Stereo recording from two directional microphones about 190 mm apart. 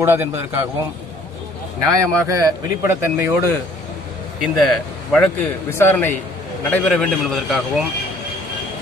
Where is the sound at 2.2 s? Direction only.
15° right (ahead or behind).